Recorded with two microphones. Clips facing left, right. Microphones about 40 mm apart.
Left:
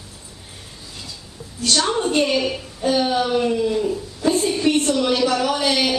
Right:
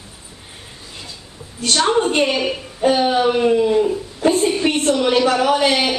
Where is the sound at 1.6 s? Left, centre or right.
Right.